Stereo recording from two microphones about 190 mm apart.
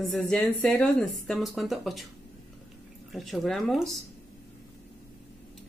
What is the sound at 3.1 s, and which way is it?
Speech, centre (ahead or behind).